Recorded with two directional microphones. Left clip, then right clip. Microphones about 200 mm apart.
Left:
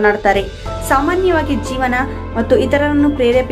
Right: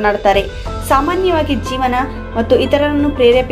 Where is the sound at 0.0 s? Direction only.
20° left (ahead or behind).